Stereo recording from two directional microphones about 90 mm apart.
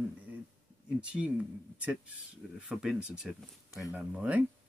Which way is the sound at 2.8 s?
5° right (ahead or behind).